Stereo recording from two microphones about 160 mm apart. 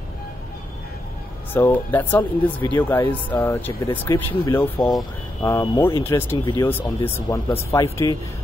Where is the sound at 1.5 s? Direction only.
10° left (ahead or behind).